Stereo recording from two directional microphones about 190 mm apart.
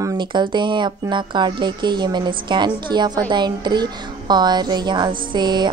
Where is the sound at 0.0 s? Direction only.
20° right (ahead or behind).